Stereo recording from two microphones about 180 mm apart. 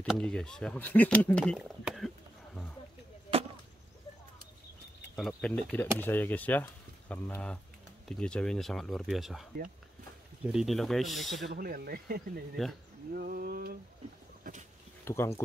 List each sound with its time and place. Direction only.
0.0 s speech: 5° left (ahead or behind)
5.1 s speech: 5° left (ahead or behind)
11.4 s speech: 60° right (ahead or behind)
12.6 s speech: centre (ahead or behind)
13.1 s speech: 55° right (ahead or behind)
15.0 s speech: 15° left (ahead or behind)